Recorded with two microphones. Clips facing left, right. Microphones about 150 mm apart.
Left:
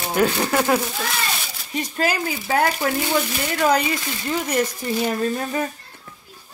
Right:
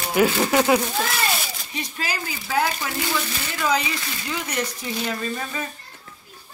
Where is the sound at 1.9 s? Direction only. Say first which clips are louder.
Left 9 dB; 50° left (ahead or behind).